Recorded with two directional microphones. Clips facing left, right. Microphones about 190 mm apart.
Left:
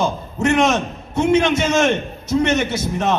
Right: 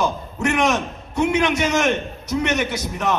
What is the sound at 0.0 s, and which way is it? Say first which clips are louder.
A man's voice: left 2 dB; 25° left (ahead or behind).